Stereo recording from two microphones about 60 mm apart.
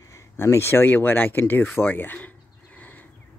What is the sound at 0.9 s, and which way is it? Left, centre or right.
Speech, left.